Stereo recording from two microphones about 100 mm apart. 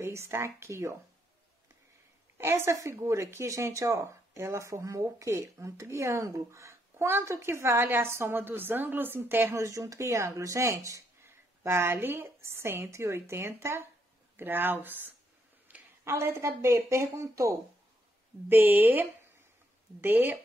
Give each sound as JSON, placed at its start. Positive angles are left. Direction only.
{"t": 0.0, "sound": "speech", "side_deg": -25}
{"t": 2.3, "sound": "speech", "side_deg": -25}
{"t": 18.5, "sound": "speech", "side_deg": -20}